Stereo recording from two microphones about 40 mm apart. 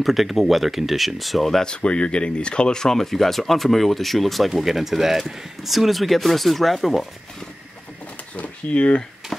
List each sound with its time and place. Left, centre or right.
0.0 s speech: centre
1.6 s speech: left; by 7.1 s centre
8.4 s a sound: left